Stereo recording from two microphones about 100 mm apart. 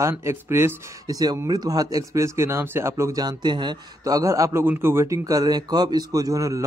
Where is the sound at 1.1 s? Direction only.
40° right (ahead or behind).